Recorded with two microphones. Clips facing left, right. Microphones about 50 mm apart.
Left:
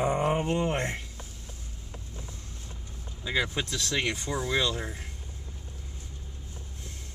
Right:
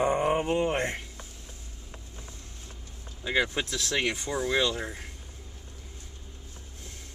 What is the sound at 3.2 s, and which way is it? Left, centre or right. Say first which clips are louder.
Vehicle: right 2 dB; right.